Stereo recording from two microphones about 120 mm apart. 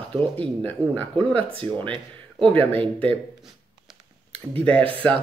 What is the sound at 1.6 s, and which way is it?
Speech, 40° right (ahead or behind).